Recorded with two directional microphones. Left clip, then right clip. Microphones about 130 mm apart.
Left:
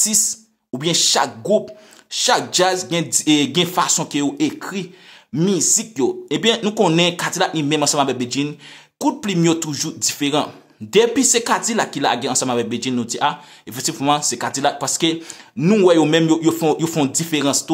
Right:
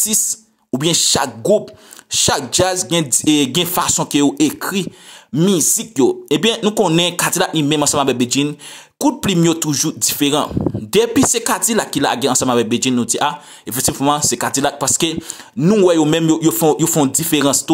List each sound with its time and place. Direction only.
0.0 s speech: 35° right (ahead or behind)